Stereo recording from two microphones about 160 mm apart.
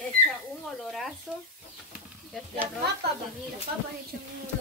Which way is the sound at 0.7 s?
Centre (ahead or behind).